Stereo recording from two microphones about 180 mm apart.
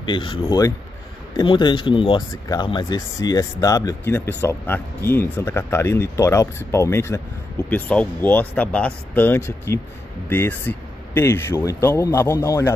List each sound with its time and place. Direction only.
0.0 s speech: 25° left (ahead or behind)